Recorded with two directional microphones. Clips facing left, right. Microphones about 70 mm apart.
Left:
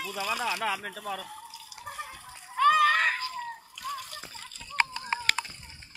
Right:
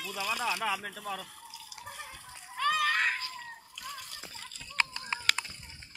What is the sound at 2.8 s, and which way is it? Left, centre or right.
Screaming, left.